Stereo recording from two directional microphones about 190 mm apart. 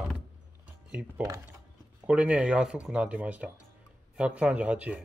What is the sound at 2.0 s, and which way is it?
Speech, 5° right (ahead or behind).